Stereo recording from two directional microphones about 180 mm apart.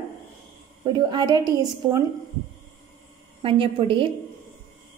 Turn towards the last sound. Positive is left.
turn(degrees=-30)  # may be behind; listen again after turning